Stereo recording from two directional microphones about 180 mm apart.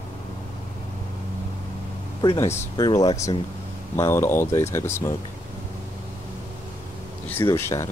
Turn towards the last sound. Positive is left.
turn(degrees=15)  # may be behind; listen again after turning